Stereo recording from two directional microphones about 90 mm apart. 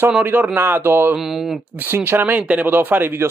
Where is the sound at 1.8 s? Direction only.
25° right (ahead or behind).